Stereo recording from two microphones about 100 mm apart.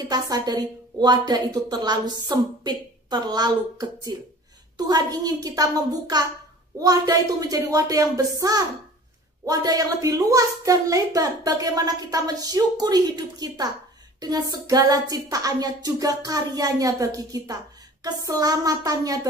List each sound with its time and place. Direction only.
0.1 s a woman's voice: 40° right (ahead or behind)